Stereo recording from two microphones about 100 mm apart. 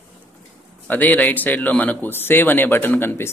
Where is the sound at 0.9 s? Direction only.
15° left (ahead or behind).